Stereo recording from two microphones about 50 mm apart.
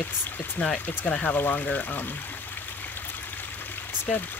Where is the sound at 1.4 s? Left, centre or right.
Left.